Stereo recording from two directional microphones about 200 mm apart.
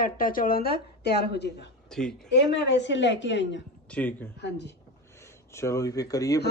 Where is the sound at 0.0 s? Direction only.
45° left (ahead or behind).